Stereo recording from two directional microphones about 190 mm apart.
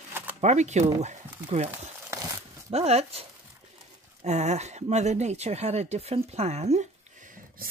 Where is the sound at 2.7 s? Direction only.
35° right (ahead or behind).